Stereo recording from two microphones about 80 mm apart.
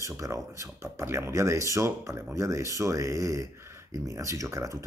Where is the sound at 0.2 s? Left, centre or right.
Right.